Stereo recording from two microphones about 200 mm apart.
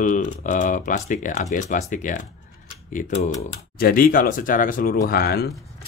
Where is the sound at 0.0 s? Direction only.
40° left (ahead or behind).